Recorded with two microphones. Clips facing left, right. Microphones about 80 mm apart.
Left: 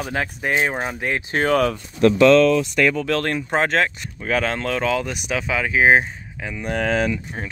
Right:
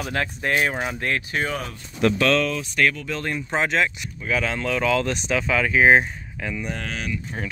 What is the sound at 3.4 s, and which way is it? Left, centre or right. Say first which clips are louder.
Speech: even; left.